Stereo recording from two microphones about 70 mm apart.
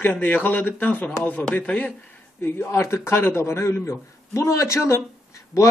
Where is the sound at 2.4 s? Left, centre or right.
Left.